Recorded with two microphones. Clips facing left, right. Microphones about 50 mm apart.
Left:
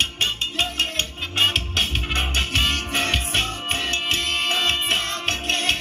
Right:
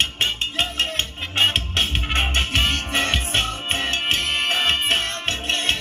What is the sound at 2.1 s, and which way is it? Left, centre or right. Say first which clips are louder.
Music: right 2 dB; right.